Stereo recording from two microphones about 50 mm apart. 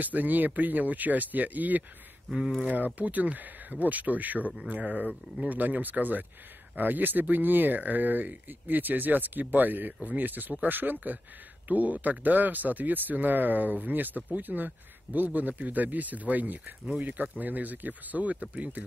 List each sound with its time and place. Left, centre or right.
0.0 s speech: right